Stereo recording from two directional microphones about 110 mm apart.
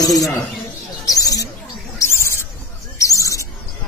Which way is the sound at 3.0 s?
30° left (ahead or behind).